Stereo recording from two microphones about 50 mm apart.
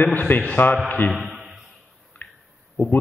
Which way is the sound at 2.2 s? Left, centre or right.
Left.